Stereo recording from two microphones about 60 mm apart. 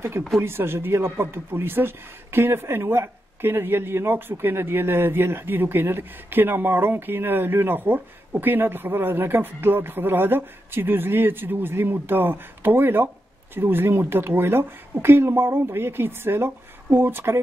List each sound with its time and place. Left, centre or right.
0.4 s speech: right